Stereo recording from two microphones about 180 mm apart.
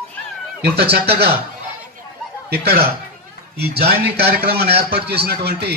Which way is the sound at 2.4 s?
60° right (ahead or behind).